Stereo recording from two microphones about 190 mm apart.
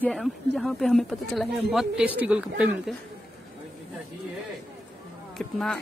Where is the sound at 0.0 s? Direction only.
Centre (ahead or behind).